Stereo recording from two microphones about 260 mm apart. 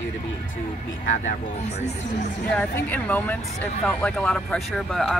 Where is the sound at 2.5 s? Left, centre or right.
Centre.